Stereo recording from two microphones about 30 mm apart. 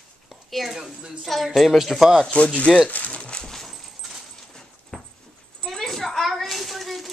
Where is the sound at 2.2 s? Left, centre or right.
Left.